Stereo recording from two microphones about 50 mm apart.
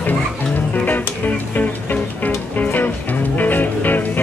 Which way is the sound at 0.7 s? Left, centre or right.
Left.